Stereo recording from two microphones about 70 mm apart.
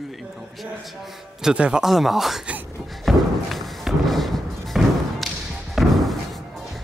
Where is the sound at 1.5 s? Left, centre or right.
Centre.